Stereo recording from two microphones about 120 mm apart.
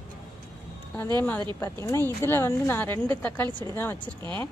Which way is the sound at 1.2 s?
15° left (ahead or behind).